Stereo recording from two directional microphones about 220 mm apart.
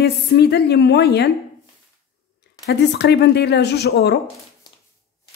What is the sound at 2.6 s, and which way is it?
A woman's voice, 50° left (ahead or behind).